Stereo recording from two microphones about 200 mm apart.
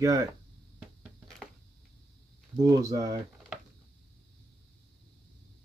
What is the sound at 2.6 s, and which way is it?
Speech, 15° right (ahead or behind).